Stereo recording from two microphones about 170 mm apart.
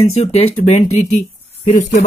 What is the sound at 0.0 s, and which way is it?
Speech, 40° left (ahead or behind).